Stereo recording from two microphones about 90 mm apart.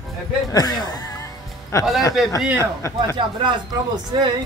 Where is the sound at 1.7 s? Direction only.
35° left (ahead or behind).